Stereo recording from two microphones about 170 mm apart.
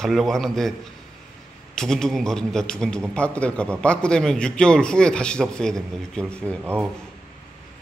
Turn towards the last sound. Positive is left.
turn(degrees=-15)  # may be behind; listen again after turning